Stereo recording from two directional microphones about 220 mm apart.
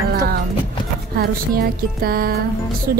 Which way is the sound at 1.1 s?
45° right (ahead or behind).